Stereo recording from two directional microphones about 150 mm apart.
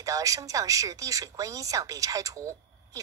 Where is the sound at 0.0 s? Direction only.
25° right (ahead or behind).